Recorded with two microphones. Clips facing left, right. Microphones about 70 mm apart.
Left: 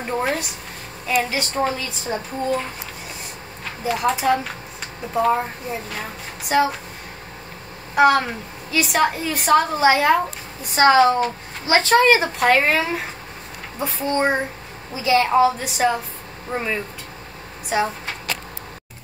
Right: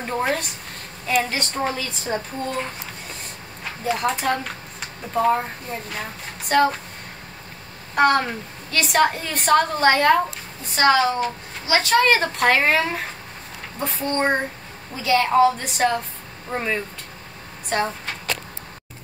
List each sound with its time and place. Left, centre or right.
0.0 s a woman's voice: centre
3.8 s a woman's voice: centre
7.9 s a woman's voice: centre
10.7 s a woman's voice: left
12.4 s a woman's voice: centre
17.6 s a sound: centre